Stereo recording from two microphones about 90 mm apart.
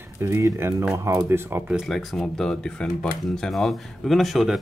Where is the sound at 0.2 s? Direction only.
35° right (ahead or behind).